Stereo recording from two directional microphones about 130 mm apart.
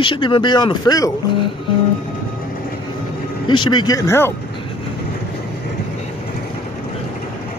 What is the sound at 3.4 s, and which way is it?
Speech, 35° left (ahead or behind).